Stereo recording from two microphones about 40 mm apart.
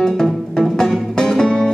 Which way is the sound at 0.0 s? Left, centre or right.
Centre.